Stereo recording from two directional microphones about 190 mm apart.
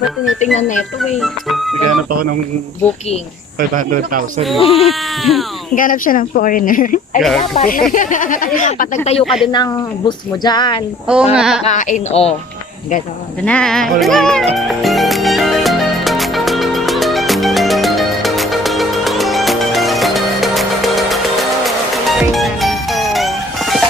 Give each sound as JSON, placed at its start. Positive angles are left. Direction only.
{"t": 0.4, "sound": "speech", "side_deg": 40}
{"t": 3.5, "sound": "speech", "side_deg": -45}
{"t": 4.6, "sound": "speech", "side_deg": 30}
{"t": 4.8, "sound": "speech", "side_deg": 0}
{"t": 5.8, "sound": "speech", "side_deg": 45}
{"t": 7.2, "sound": "speech", "side_deg": 0}
{"t": 7.5, "sound": "speech", "side_deg": 45}
{"t": 9.2, "sound": "speech", "side_deg": 0}
{"t": 9.5, "sound": "speech", "side_deg": 20}
{"t": 11.3, "sound": "speech", "side_deg": -5}
{"t": 11.6, "sound": "speech", "side_deg": 40}
{"t": 13.4, "sound": "music", "side_deg": 5}